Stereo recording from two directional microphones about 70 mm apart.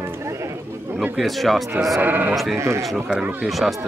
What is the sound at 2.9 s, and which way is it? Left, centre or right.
Speech, centre.